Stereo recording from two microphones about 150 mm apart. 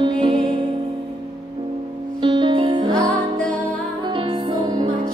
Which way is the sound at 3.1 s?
10° left (ahead or behind).